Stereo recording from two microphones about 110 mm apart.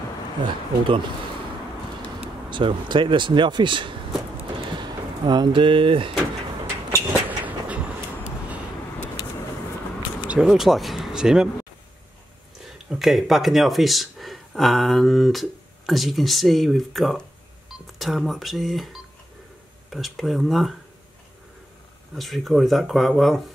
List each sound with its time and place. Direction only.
0.4 s speech: 50° right (ahead or behind)
2.5 s speech: 45° right (ahead or behind)
7.2 s a sound: 15° right (ahead or behind)
10.2 s speech: 10° right (ahead or behind)
12.9 s speech: centre (ahead or behind)
22.1 s speech: centre (ahead or behind)